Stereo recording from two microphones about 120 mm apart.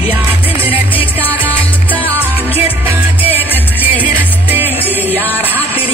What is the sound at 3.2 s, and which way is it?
Music, 15° right (ahead or behind).